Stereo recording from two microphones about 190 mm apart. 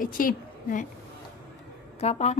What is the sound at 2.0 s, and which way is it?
Speech, 35° left (ahead or behind).